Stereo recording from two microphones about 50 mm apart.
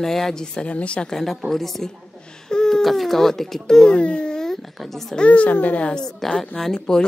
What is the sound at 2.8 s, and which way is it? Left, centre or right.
Speech, centre.